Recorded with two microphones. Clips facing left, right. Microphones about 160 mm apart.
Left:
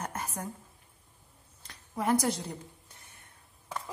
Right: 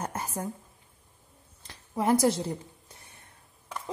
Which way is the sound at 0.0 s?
30° right (ahead or behind).